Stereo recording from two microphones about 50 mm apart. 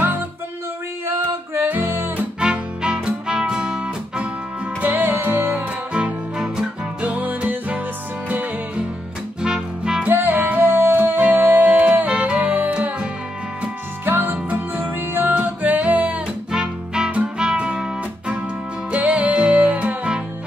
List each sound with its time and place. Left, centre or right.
1.0 s music: right
2.4 s music: centre
4.8 s music: right
5.9 s music: centre
7.0 s music: right
9.4 s music: centre
10.0 s music: right
11.1 s music: right
14.0 s music: right
14.3 s music: right
15.0 s music: right
15.3 s music: right
16.5 s music: centre
18.9 s music: right